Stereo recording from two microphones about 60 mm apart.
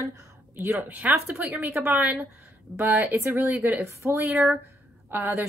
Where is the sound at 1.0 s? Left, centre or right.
Right.